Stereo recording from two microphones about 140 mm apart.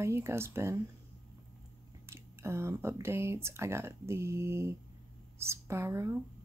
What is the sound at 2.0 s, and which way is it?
Speech, 20° right (ahead or behind).